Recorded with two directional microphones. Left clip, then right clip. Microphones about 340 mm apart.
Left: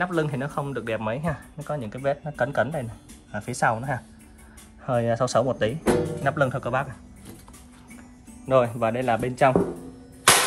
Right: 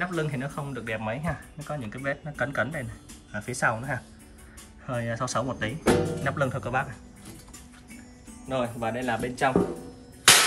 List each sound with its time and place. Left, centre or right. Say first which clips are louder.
0.1 s speech: left 5 dB; centre
8.6 s speech: left 5 dB; centre